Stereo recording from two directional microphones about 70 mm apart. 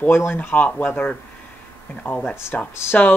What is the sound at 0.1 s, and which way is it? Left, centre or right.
Speech, left.